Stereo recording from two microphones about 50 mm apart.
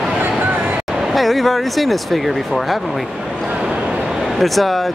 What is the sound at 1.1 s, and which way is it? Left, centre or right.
Speech, centre.